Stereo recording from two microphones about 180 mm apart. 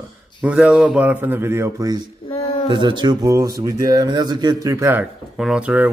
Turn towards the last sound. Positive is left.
turn(degrees=-5)  # may be behind; listen again after turning